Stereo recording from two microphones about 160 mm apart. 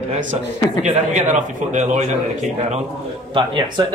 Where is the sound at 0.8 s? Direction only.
50° right (ahead or behind).